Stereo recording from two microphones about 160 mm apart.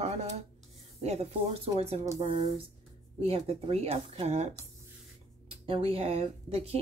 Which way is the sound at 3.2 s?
40° right (ahead or behind).